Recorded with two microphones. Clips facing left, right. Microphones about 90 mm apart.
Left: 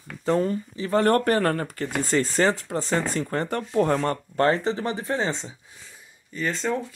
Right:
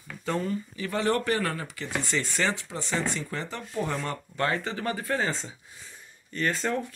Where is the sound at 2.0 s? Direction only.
40° left (ahead or behind); by 5.5 s 25° left (ahead or behind).